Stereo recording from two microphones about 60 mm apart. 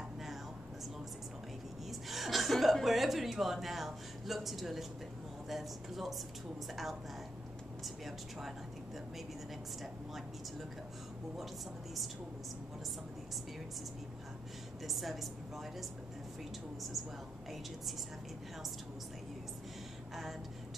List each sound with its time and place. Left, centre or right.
1.9 s a woman's voice: centre
14.9 s speech: centre